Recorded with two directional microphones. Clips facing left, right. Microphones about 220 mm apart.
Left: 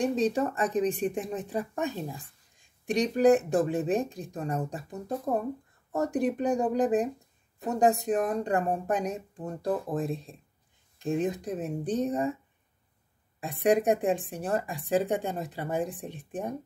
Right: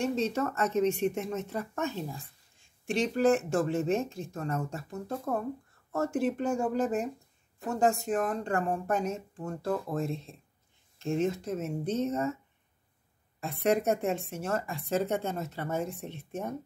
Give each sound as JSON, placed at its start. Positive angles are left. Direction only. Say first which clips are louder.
{"t": 0.0, "sound": "speech", "louder": "left 3 dB", "side_deg": 15}
{"t": 13.4, "sound": "speech", "louder": "left 3 dB", "side_deg": 15}